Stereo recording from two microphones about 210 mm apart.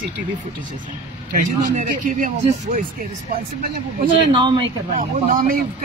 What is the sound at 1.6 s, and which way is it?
Speech, 40° right (ahead or behind).